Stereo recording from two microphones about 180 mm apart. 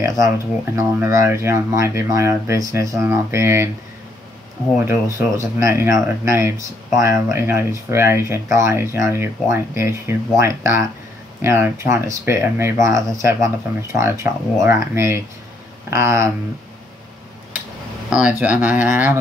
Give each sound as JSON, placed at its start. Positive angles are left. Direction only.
{"t": 0.7, "sound": "speech", "side_deg": -15}
{"t": 4.7, "sound": "speech", "side_deg": -15}
{"t": 18.1, "sound": "speech", "side_deg": -5}